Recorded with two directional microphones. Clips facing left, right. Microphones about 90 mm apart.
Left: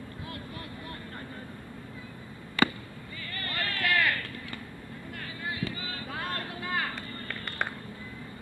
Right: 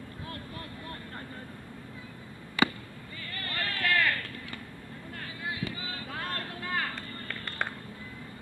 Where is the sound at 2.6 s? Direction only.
5° right (ahead or behind).